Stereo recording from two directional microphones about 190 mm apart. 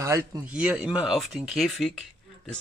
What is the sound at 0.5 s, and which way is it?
Speech, 5° right (ahead or behind).